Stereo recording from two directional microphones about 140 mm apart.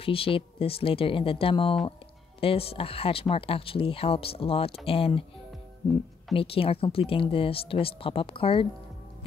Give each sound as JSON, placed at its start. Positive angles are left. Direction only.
{"t": 0.0, "sound": "speech", "side_deg": 40}
{"t": 6.3, "sound": "speech", "side_deg": 40}